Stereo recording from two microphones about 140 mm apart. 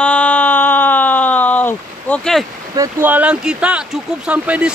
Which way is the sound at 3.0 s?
10° right (ahead or behind).